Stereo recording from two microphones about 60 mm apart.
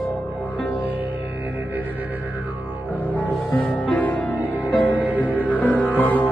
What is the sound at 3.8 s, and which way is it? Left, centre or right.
Music, left.